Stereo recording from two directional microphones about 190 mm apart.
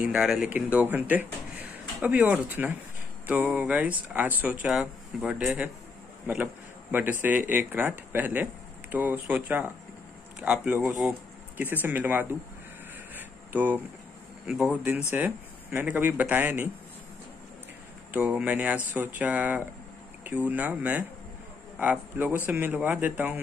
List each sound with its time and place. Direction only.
0.0 s speech: 5° right (ahead or behind)
13.1 s a sound: 10° right (ahead or behind)
14.4 s speech: 5° right (ahead or behind)
18.1 s speech: 5° right (ahead or behind)